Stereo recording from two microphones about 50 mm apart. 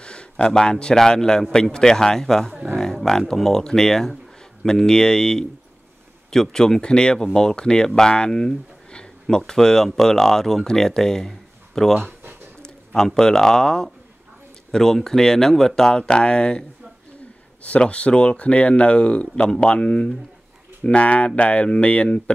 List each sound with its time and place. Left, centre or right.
0.0 s speech: centre
8.9 s a sound: centre
9.4 s speech: centre
17.6 s speech: left